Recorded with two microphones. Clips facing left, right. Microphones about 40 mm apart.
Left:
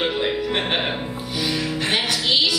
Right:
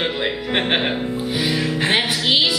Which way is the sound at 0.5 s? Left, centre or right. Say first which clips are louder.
Right 3 dB; right.